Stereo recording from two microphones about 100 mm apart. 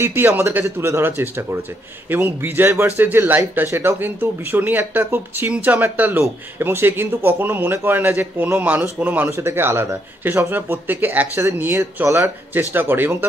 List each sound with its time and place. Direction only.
0.0 s speech: 25° right (ahead or behind)